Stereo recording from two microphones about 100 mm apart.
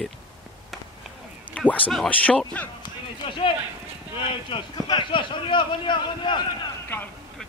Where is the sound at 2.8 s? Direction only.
55° left (ahead or behind).